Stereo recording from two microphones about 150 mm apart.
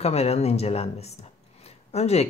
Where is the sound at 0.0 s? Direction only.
45° left (ahead or behind).